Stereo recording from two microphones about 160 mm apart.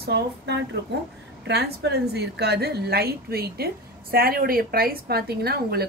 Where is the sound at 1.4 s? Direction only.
85° right.